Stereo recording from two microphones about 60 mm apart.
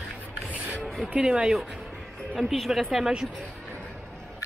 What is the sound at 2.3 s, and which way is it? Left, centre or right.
Speech, centre.